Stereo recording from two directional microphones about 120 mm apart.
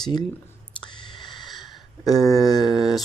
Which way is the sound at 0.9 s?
40° left (ahead or behind).